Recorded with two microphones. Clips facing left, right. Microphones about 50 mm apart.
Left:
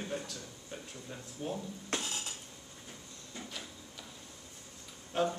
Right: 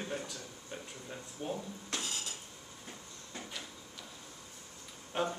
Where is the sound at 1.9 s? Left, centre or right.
Left.